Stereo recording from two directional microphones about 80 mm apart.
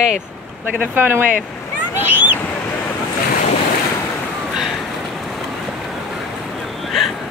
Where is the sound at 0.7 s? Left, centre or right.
Right.